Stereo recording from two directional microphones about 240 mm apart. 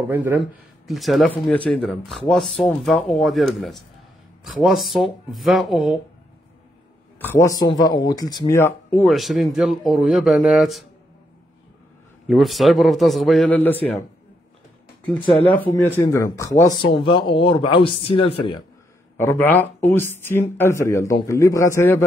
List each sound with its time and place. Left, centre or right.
0.1 s speech: centre
7.2 s speech: centre
12.3 s speech: centre
15.0 s a man's voice: centre
19.1 s speech: centre